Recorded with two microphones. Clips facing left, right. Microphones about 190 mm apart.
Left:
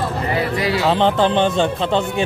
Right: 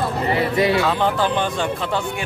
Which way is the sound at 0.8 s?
25° left (ahead or behind).